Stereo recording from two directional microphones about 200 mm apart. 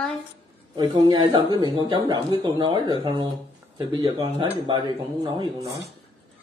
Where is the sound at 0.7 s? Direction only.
20° right (ahead or behind).